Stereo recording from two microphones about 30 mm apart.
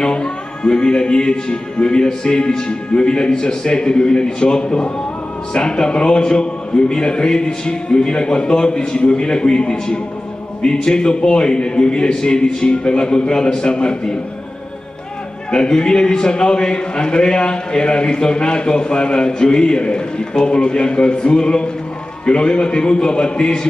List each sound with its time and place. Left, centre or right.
0.0 s music: left
1.5 s a man's voice: left
15.5 s a man's voice: left